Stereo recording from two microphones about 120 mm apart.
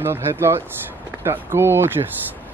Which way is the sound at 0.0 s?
20° right (ahead or behind).